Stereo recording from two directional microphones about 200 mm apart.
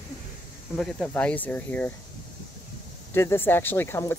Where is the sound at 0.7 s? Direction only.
5° left (ahead or behind).